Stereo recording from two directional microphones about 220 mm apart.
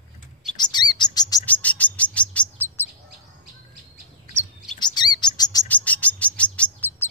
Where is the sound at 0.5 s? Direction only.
20° left (ahead or behind).